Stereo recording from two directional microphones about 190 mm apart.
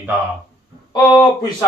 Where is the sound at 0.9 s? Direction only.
20° left (ahead or behind).